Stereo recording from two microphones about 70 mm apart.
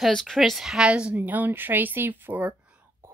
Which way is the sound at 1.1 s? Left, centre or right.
Right.